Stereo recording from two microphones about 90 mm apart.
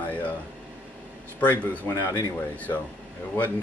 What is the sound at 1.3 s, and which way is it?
Speech, 15° left (ahead or behind).